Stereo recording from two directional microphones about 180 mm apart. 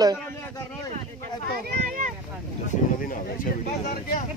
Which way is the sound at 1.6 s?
50° right (ahead or behind).